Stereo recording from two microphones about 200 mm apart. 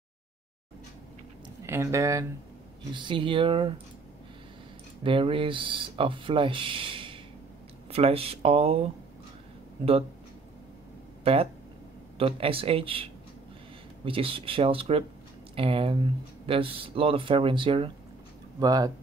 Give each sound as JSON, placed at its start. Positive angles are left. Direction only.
{"t": 1.7, "sound": "speech", "side_deg": -15}
{"t": 5.0, "sound": "speech", "side_deg": -25}
{"t": 12.2, "sound": "speech", "side_deg": -30}